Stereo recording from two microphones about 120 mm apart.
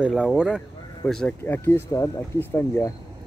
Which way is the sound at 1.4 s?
20° left (ahead or behind).